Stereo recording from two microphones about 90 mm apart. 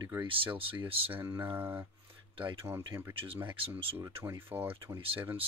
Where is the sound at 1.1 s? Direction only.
25° right (ahead or behind).